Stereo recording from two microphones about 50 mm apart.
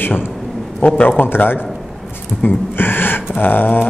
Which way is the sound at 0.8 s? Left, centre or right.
Left.